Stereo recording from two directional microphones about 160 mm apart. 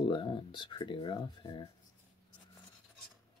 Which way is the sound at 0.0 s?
30° left (ahead or behind).